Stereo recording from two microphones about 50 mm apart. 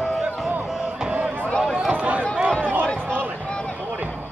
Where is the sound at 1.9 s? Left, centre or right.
Right.